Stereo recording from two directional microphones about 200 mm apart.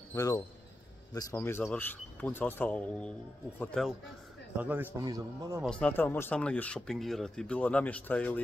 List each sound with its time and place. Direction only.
0.1 s speech: 15° left (ahead or behind)
4.6 s a man's voice: 10° right (ahead or behind)
5.6 s speech: 5° left (ahead or behind)